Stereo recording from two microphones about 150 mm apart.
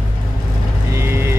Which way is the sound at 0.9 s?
15° right (ahead or behind).